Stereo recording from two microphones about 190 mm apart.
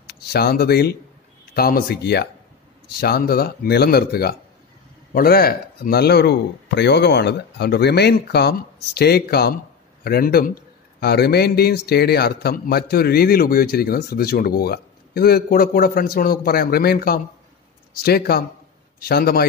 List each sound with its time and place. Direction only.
0.0 s a man's voice: 60° left (ahead or behind)